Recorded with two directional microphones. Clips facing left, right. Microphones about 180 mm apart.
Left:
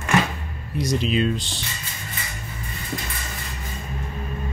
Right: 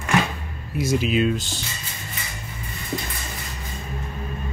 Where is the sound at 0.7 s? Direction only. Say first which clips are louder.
Right 1 dB; 5° right (ahead or behind).